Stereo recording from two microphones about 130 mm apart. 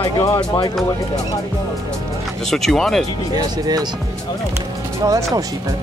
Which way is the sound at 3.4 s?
30° right (ahead or behind).